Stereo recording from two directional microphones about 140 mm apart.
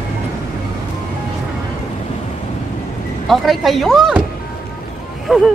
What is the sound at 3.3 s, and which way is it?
Speech, centre (ahead or behind).